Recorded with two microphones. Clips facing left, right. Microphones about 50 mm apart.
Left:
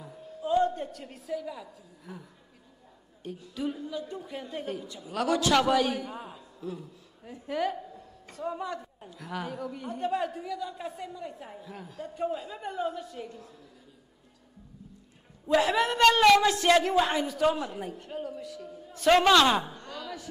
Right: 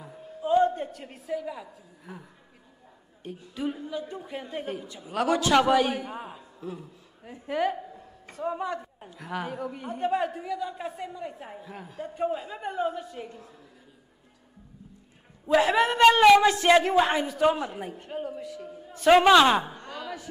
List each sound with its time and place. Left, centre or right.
0.0 s a woman's voice: centre
3.3 s a woman's voice: centre
15.4 s a woman's voice: centre